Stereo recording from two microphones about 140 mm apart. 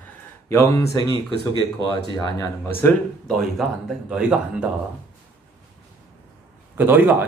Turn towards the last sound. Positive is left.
turn(degrees=-15)  # may be behind; listen again after turning